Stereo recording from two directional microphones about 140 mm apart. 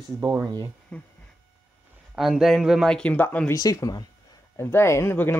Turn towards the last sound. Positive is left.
turn(degrees=15)  # may be behind; listen again after turning